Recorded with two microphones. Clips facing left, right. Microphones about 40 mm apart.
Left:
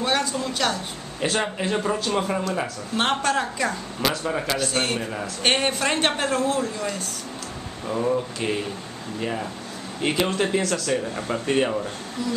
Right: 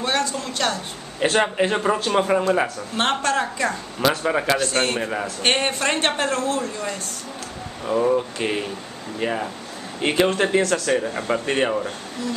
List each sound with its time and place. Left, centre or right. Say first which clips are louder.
0.0 s a man's voice: even; centre
1.3 s speech: right 5 dB; right
3.0 s a man's voice: right 1 dB; centre
4.0 s speech: right 5 dB; right
4.6 s a man's voice: right 3 dB; centre
5.0 s speech: right 4 dB; centre
5.4 s a man's voice: even; centre
7.8 s speech: right 4 dB; centre